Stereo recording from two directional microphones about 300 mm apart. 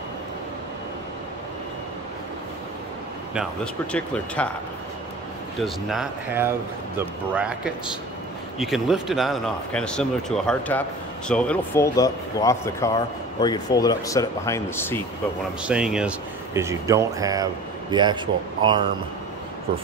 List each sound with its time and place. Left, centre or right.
3.9 s speech: centre
5.6 s speech: centre
15.6 s speech: centre